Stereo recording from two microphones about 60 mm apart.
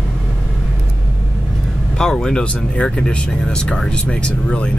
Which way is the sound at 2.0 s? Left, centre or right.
Centre.